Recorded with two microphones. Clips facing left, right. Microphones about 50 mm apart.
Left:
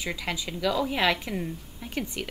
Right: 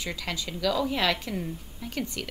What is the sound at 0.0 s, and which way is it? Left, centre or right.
A woman's voice, centre.